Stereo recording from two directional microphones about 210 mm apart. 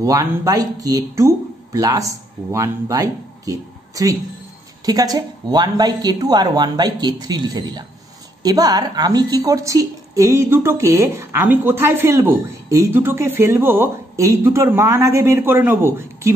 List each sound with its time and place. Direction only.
0.0 s a woman's voice: 15° right (ahead or behind)